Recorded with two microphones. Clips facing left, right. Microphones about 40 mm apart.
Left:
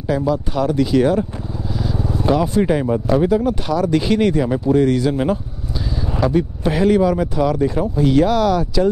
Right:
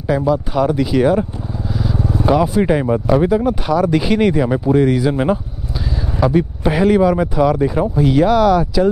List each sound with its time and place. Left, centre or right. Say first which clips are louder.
0.0 s speech: right 3 dB; centre